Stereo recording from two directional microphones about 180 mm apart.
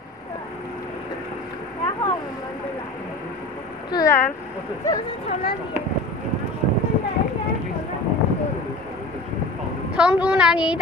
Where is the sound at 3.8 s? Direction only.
20° left (ahead or behind).